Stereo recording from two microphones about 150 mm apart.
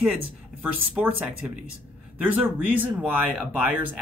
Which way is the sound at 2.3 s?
10° right (ahead or behind).